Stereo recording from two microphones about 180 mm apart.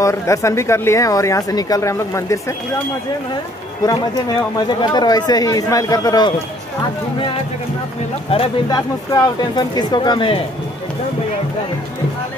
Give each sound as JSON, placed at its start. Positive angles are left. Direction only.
{"t": 0.0, "sound": "speech", "side_deg": 15}
{"t": 4.6, "sound": "speech", "side_deg": 25}
{"t": 8.3, "sound": "speech", "side_deg": 30}